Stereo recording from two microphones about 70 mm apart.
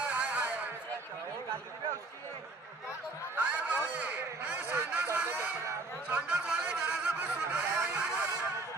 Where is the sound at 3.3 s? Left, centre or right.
Centre.